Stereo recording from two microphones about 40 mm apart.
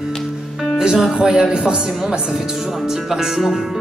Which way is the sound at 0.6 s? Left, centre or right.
Centre.